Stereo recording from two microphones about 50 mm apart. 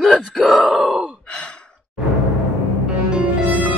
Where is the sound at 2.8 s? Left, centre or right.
Centre.